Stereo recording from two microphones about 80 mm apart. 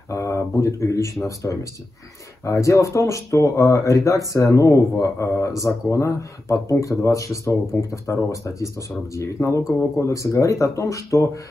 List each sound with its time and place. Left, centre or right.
0.1 s speech: left